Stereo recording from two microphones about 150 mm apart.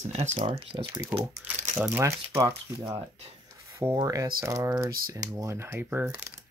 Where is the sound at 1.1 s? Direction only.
5° right (ahead or behind).